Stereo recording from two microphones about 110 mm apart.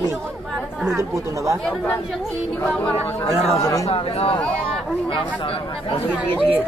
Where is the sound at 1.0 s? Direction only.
30° right (ahead or behind).